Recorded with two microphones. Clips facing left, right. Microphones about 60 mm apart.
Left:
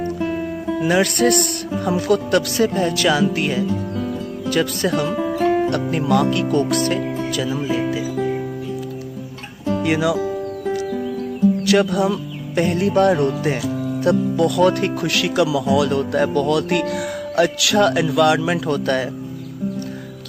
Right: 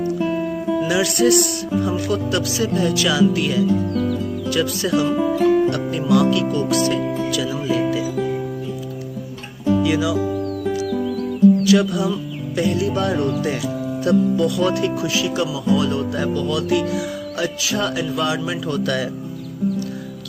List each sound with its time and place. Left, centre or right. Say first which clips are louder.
0.7 s speech: left 3 dB; left
5.1 s music: right 2 dB; centre
5.9 s speech: right 1 dB; left
7.9 s music: even; left
9.8 s speech: left 2 dB; left
11.6 s speech: even; left
13.4 s speech: left 1 dB; left